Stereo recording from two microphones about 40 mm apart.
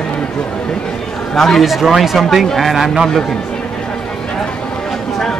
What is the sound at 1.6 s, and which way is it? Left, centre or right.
Speech, centre.